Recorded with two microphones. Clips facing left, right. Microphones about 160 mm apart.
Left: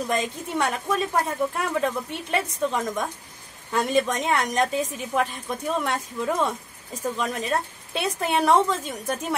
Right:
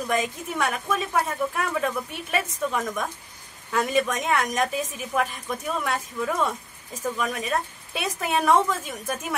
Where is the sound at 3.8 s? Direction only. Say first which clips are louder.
Left 1 dB; 10° right (ahead or behind).